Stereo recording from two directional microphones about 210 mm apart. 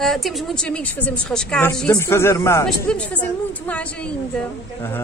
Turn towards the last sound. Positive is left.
turn(degrees=5)  # may be behind; listen again after turning